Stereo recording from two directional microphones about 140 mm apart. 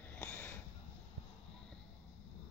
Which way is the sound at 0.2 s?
15° left (ahead or behind).